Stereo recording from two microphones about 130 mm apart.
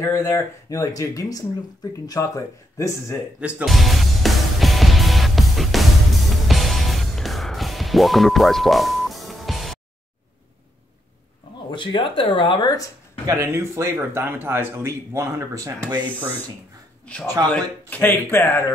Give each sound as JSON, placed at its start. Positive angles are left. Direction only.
{"t": 0.0, "sound": "speech", "side_deg": 20}
{"t": 3.3, "sound": "music", "side_deg": -10}
{"t": 11.7, "sound": "speech", "side_deg": 40}
{"t": 13.3, "sound": "speech", "side_deg": -20}
{"t": 17.0, "sound": "a man's voice", "side_deg": 10}